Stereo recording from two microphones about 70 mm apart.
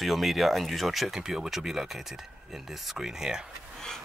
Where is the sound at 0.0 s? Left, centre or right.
Centre.